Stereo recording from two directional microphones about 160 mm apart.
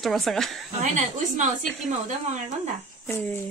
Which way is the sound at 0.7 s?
50° right (ahead or behind).